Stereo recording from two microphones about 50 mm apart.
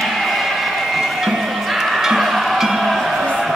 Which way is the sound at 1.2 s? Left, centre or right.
Centre.